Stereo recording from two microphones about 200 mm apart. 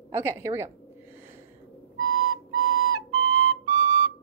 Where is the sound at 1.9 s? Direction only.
90° right.